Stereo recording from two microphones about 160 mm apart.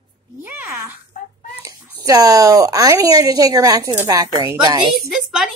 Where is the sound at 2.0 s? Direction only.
25° right (ahead or behind).